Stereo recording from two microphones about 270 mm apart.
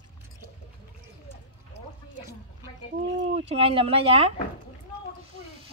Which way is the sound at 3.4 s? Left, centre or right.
Right.